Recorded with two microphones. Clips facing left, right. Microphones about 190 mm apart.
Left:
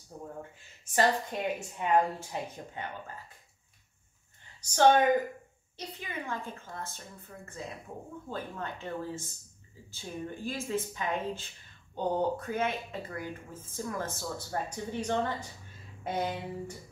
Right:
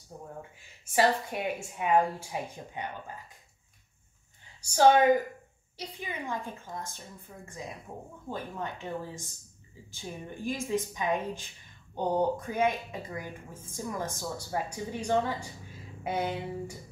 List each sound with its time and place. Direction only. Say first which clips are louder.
0.1 s speech: left 1 dB; 20° right (ahead or behind)
4.6 s a woman's voice: right 2 dB; 10° right (ahead or behind)